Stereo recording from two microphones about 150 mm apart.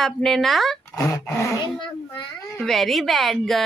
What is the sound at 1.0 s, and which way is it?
Dog, 20° left (ahead or behind).